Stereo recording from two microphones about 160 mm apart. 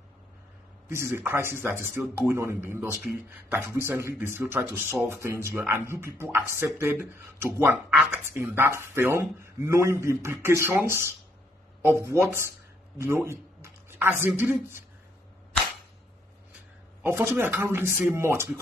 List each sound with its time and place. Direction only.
0.8 s speech: 15° right (ahead or behind)
12.9 s a sound: 15° right (ahead or behind)
14.2 s speech: 10° right (ahead or behind)
17.0 s speech: 15° right (ahead or behind)